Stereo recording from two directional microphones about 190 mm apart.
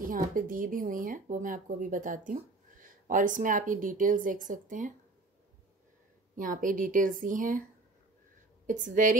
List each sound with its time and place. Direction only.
0.0 s speech: 45° right (ahead or behind)
6.3 s speech: 45° right (ahead or behind)
8.6 s speech: 45° right (ahead or behind)